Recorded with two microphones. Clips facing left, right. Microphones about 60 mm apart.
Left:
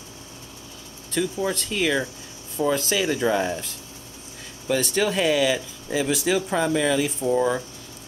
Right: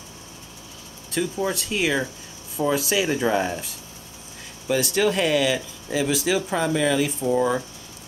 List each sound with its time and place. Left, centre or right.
1.1 s speech: centre